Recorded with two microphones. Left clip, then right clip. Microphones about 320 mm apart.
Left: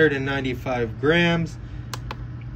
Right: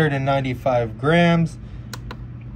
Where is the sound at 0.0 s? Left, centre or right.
Centre.